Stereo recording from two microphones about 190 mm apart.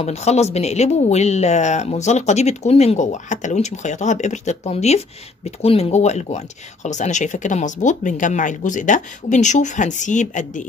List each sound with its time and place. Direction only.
0.0 s speech: 35° left (ahead or behind)